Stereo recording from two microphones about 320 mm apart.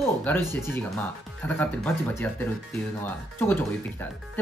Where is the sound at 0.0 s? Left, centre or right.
Centre.